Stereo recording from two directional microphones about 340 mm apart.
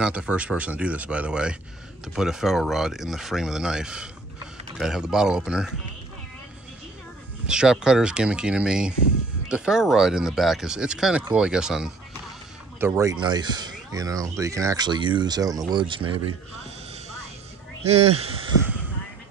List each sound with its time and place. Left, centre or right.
0.0 s speech: centre
7.4 s speech: centre
17.8 s speech: centre